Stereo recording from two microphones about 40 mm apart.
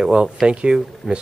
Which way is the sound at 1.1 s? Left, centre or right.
Centre.